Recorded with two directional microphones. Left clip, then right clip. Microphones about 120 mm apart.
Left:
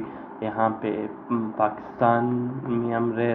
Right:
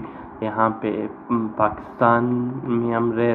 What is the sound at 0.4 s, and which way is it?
A man's voice, 40° right (ahead or behind).